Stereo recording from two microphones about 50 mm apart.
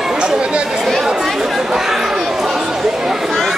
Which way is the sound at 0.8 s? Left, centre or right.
Centre.